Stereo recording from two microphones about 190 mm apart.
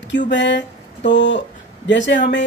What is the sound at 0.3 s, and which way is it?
Speech, 65° left (ahead or behind).